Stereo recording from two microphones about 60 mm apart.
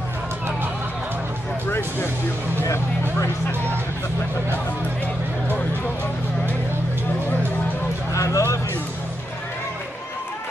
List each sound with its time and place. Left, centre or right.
1.7 s music: left
2.6 s speech: left
8.1 s a sound: left